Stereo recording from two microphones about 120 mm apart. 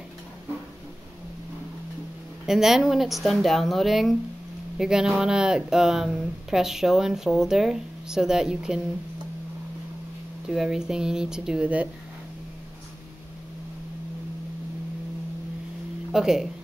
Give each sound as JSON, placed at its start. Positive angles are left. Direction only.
{"t": 2.4, "sound": "speech", "side_deg": -5}
{"t": 10.5, "sound": "speech", "side_deg": -5}
{"t": 16.1, "sound": "speech", "side_deg": -5}